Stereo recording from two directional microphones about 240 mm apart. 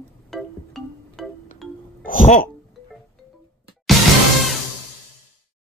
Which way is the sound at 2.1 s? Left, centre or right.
Left.